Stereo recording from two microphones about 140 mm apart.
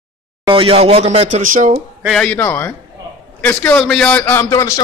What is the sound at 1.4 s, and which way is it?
Speech, 70° right (ahead or behind).